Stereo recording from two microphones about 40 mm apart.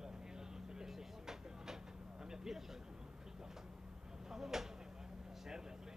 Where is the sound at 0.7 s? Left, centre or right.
Centre.